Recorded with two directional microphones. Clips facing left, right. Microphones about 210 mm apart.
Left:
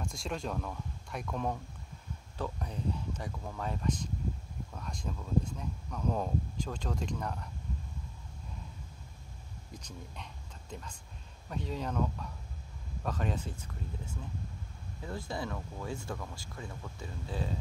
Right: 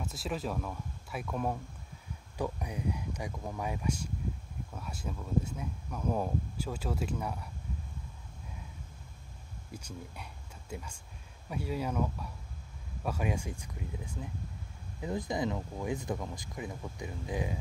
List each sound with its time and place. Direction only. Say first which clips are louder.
0.0 s speech: right 1 dB; 5° right (ahead or behind)
9.7 s speech: right 3 dB; 10° right (ahead or behind)